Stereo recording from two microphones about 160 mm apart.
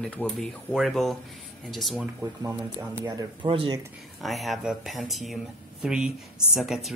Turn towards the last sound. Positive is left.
turn(degrees=0)  # may be behind; listen again after turning